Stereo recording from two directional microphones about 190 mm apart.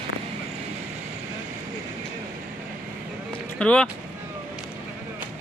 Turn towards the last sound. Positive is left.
turn(degrees=5)  # may be behind; listen again after turning